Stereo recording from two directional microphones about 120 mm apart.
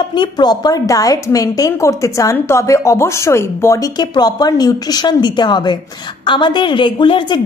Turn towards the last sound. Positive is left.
turn(degrees=45)  # may be behind; listen again after turning